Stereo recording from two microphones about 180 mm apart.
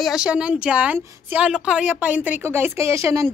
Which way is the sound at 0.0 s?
5° right (ahead or behind).